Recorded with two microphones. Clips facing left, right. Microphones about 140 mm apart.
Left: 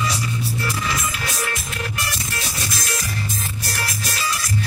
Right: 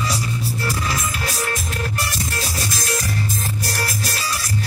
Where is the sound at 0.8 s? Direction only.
40° right (ahead or behind).